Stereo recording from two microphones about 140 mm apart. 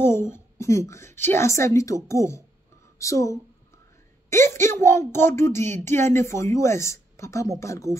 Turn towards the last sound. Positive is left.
turn(degrees=20)  # may be behind; listen again after turning